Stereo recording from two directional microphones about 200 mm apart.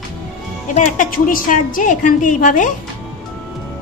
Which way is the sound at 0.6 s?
40° left (ahead or behind).